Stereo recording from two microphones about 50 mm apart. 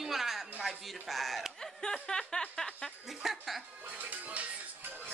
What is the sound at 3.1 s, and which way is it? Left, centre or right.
Music, centre.